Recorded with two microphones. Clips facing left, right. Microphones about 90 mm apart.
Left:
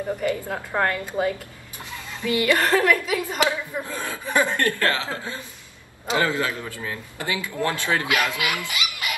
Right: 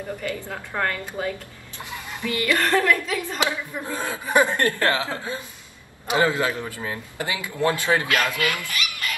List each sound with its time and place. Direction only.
0.2 s a woman's voice: 20° left (ahead or behind)
3.8 s a man's voice: 20° right (ahead or behind)
8.0 s speech: 20° left (ahead or behind)